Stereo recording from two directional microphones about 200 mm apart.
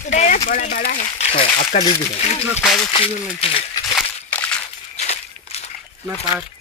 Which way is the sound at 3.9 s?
5° left (ahead or behind).